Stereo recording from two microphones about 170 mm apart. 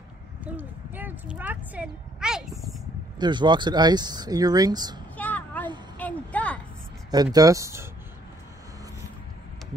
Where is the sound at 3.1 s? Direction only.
25° right (ahead or behind).